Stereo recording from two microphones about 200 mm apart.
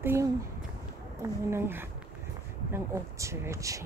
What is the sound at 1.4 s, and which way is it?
A woman's voice, 10° right (ahead or behind).